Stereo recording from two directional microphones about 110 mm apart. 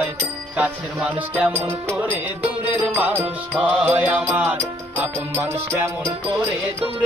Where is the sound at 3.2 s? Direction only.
5° right (ahead or behind).